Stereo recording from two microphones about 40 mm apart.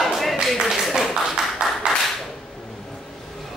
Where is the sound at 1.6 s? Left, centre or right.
Right.